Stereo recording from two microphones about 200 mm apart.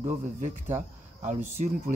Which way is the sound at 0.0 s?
35° right (ahead or behind).